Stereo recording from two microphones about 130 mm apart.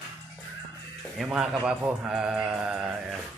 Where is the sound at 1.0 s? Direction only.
5° right (ahead or behind).